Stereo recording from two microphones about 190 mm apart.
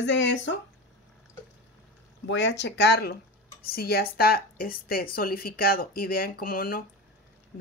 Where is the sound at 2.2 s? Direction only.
70° left (ahead or behind).